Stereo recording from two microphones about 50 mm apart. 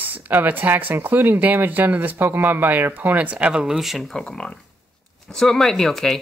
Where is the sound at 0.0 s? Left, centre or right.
Right.